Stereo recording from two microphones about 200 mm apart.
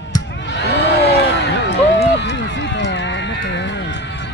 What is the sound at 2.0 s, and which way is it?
Run, 60° left (ahead or behind).